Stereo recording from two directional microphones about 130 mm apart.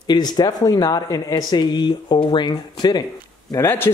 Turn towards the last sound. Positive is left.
turn(degrees=20)  # may be behind; listen again after turning